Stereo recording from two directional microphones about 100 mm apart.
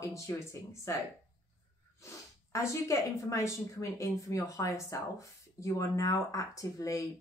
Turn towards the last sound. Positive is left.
turn(degrees=35)  # may be behind; listen again after turning